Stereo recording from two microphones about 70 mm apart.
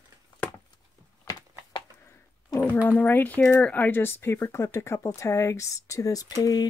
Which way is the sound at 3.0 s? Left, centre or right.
Left.